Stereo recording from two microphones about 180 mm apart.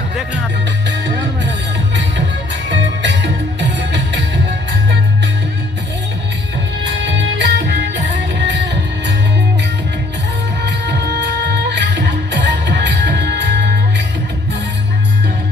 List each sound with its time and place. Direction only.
3.6 s music: 75° right (ahead or behind)
7.0 s music: 85° right
8.4 s music: 90° right
10.6 s music: 75° right (ahead or behind)